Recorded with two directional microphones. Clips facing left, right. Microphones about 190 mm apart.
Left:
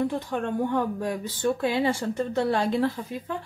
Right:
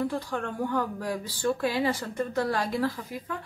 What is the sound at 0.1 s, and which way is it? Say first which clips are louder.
Speech: left 4 dB; 20° left (ahead or behind).